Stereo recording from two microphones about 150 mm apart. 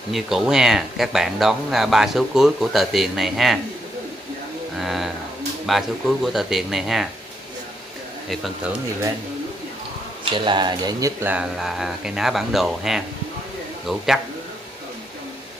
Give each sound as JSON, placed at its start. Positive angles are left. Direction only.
{"t": 0.1, "sound": "speech", "side_deg": -5}
{"t": 4.7, "sound": "speech", "side_deg": 0}
{"t": 10.3, "sound": "speech", "side_deg": -30}
{"t": 11.3, "sound": "speech", "side_deg": -5}